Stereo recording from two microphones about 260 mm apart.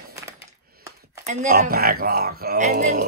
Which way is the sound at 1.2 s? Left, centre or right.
Right.